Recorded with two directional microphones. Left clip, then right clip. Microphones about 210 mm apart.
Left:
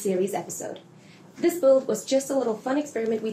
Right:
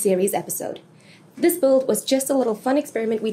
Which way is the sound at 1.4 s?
55° right (ahead or behind).